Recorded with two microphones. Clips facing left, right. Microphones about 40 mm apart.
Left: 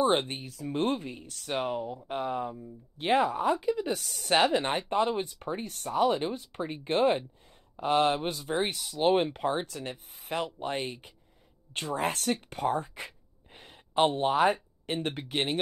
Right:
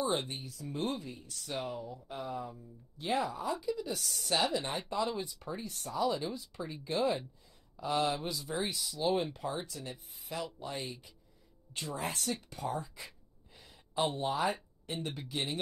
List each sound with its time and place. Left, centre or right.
0.0 s speech: left